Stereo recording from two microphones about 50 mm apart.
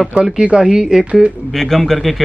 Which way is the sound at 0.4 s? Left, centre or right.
Centre.